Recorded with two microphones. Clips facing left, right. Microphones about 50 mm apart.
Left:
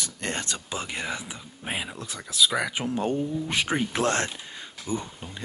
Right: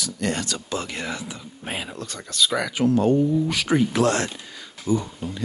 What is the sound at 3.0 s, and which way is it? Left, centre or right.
Speech, centre.